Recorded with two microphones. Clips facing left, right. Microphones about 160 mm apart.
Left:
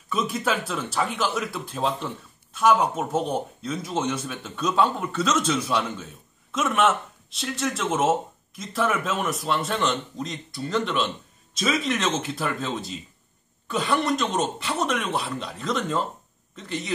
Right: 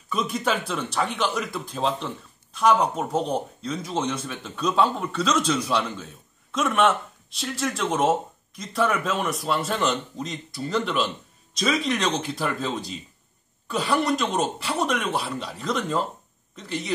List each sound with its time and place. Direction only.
0.1 s a man's voice: centre (ahead or behind)